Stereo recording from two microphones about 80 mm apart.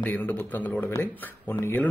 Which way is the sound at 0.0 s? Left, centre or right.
Left.